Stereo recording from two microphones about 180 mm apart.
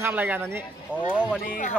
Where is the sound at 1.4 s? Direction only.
50° left (ahead or behind).